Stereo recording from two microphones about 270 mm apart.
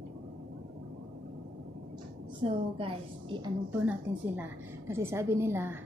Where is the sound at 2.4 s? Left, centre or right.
Centre.